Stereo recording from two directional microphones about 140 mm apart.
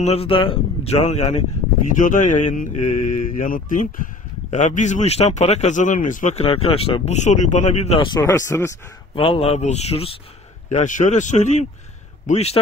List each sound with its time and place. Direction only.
0.0 s speech: 45° left (ahead or behind)
2.0 s speech: 65° left (ahead or behind)
6.4 s speech: 45° left (ahead or behind)
8.1 s speech: 25° left (ahead or behind)
9.1 s speech: 40° left (ahead or behind)
10.7 s speech: 60° left (ahead or behind)